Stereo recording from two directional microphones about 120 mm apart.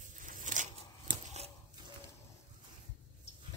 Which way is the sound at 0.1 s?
90° right.